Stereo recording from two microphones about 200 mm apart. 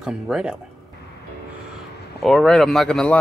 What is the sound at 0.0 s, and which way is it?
Speech, 5° right (ahead or behind).